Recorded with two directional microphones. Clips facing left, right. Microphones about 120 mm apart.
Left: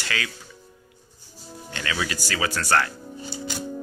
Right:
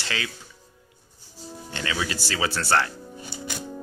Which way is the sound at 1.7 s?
25° right (ahead or behind).